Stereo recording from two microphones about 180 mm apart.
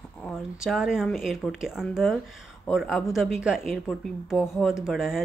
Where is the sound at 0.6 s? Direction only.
5° right (ahead or behind).